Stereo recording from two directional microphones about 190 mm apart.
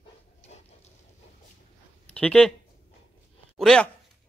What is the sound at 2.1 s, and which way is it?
Speech, 5° left (ahead or behind).